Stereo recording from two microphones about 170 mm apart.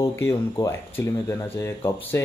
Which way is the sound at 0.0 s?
15° left (ahead or behind).